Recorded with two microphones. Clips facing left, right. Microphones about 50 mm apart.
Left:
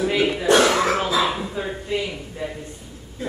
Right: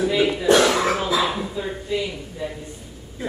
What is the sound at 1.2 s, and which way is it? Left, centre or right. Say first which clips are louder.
Dishes: left 1 dB; centre.